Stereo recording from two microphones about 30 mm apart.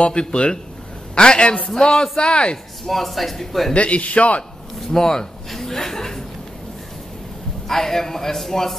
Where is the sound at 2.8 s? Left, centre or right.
Centre.